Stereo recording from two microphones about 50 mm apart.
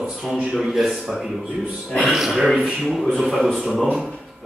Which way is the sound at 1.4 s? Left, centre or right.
Centre.